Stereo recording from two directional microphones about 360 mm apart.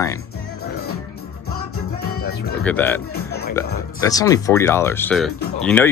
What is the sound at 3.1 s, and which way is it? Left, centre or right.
Music, left.